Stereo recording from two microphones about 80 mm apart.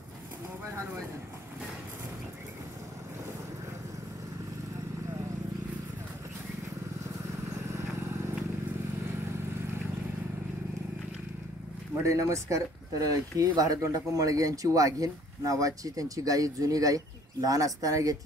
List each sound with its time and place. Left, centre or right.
12.0 s speech: right